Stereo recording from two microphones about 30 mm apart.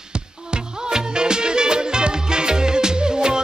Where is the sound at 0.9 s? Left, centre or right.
Right.